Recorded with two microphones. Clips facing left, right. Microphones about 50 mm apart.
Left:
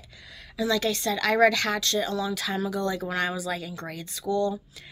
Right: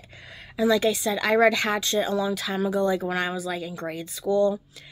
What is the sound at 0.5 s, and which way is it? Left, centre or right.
Speech, centre.